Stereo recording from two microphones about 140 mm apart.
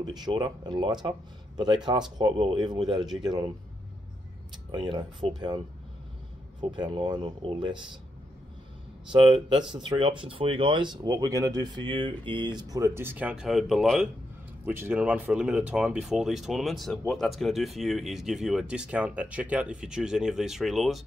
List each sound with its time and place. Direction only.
0.0 s speech: 30° right (ahead or behind)
4.6 s speech: 35° right (ahead or behind)
6.6 s speech: 35° right (ahead or behind)
9.1 s speech: 35° right (ahead or behind); by 14.1 s 5° right (ahead or behind)
14.7 s speech: 15° right (ahead or behind)